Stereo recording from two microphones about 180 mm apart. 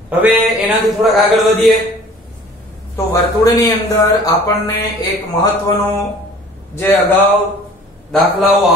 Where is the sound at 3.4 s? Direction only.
20° left (ahead or behind).